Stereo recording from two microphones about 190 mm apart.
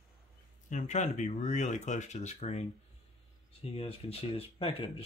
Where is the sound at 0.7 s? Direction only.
40° left (ahead or behind).